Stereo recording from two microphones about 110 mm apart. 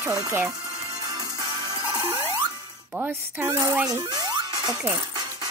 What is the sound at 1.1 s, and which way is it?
Music, 35° right (ahead or behind).